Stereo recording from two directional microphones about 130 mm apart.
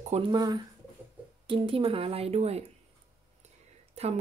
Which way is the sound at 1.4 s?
40° right (ahead or behind).